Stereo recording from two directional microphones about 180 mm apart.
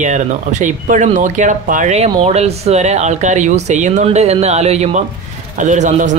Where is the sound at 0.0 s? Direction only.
40° right (ahead or behind).